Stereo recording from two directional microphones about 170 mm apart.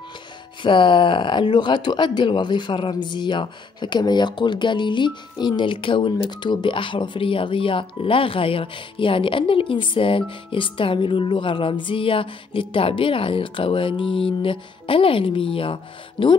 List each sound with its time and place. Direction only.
0.6 s speech: 30° left (ahead or behind)